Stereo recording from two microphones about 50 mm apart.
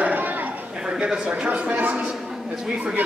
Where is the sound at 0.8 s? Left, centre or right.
Centre.